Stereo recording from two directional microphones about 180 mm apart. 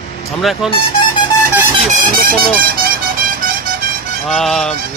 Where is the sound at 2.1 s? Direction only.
55° right (ahead or behind).